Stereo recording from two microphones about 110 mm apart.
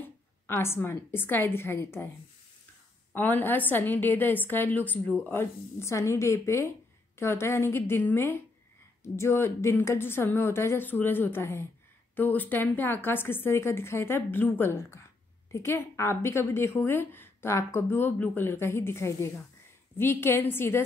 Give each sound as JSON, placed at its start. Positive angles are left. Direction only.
{"t": 0.0, "sound": "a woman's voice", "side_deg": 20}
{"t": 3.2, "sound": "a woman's voice", "side_deg": 15}